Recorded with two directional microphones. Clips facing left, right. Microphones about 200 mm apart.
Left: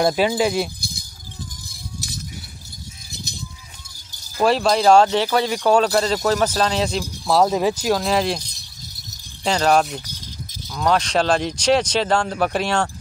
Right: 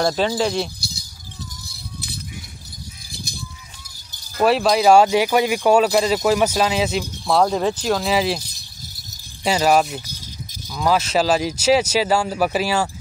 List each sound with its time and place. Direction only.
0.0 s speech: 10° left (ahead or behind)
0.7 s keys jangling: 50° left (ahead or behind)
1.7 s music: 45° left (ahead or behind)
4.4 s speech: 5° right (ahead or behind)